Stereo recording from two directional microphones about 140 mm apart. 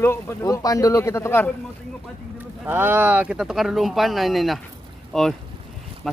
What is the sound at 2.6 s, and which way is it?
Speech, 15° right (ahead or behind).